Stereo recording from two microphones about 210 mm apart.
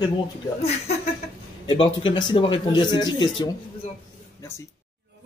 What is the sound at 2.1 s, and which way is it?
Speech, 20° left (ahead or behind).